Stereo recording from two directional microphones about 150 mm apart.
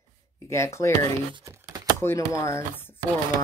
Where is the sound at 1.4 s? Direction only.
20° right (ahead or behind).